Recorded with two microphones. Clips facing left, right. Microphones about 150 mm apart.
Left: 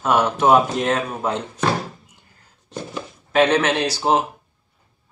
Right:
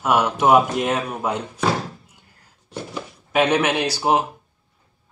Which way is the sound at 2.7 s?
10° right (ahead or behind).